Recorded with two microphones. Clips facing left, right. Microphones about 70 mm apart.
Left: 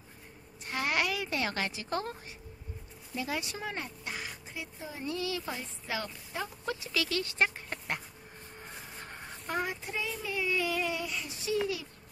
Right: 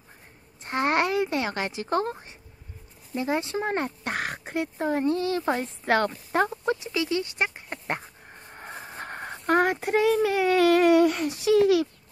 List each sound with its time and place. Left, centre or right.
0.7 s a woman's voice: right
5.0 s speech: right
6.5 s speech: right
8.5 s a child's voice: right